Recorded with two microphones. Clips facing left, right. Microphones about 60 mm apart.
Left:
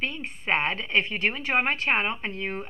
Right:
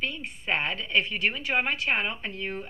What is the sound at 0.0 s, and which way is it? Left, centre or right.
Speech, left.